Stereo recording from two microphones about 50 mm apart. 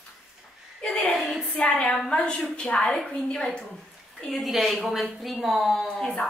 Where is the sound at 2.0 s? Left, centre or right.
Centre.